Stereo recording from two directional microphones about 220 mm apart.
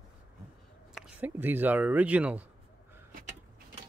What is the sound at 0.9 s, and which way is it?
Speech, 5° right (ahead or behind).